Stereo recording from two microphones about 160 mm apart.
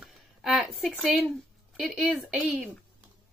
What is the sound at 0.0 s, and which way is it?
Speech, centre (ahead or behind).